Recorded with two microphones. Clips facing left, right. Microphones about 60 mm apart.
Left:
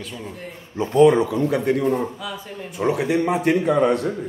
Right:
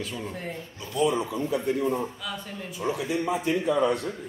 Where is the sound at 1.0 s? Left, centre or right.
Left.